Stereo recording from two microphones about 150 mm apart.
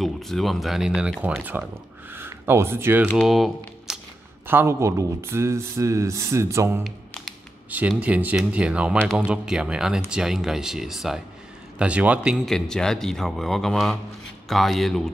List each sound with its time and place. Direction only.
0.0 s speech: centre (ahead or behind); by 3.1 s 15° right (ahead or behind)
3.2 s speech: centre (ahead or behind)
4.5 s speech: 15° right (ahead or behind)
8.0 s speech: 10° right (ahead or behind)
12.4 s speech: 5° left (ahead or behind)